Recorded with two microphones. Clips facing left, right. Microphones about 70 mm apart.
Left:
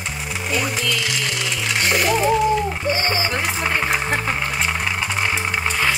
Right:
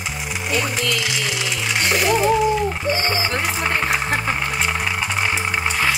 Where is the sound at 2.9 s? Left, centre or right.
Right.